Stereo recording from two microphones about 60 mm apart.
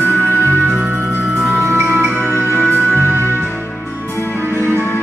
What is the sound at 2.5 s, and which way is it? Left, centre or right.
Music, left.